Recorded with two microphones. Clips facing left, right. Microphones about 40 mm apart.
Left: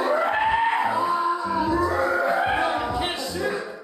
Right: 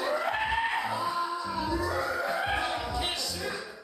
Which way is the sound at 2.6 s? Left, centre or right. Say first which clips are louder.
Left 8 dB; left.